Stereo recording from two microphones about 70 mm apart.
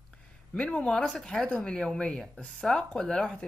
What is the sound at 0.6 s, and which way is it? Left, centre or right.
Speech, centre.